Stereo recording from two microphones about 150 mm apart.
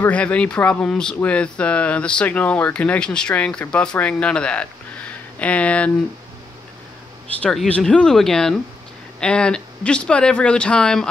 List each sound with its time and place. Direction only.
0.0 s speech: 10° left (ahead or behind)
7.4 s speech: 5° left (ahead or behind)